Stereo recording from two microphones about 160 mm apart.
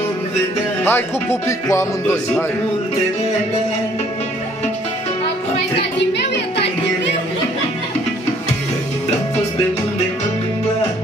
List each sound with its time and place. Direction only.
0.8 s speech: 15° left (ahead or behind)
5.9 s music: 90° left